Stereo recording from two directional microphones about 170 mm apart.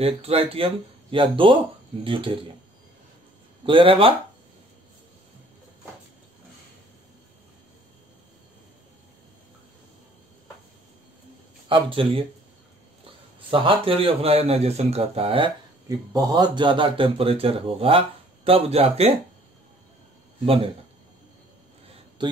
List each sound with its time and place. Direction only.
0.0 s speech: 35° right (ahead or behind)
3.6 s speech: 30° right (ahead or behind)
11.7 s speech: 30° right (ahead or behind)
13.5 s speech: 30° right (ahead or behind)
15.9 s speech: 20° right (ahead or behind); by 19.1 s 35° right (ahead or behind)
20.4 s speech: 35° right (ahead or behind)
22.2 s speech: 25° right (ahead or behind)